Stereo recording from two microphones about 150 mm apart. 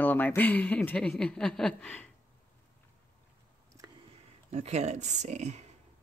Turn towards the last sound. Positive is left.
turn(degrees=-50)  # may be behind; listen again after turning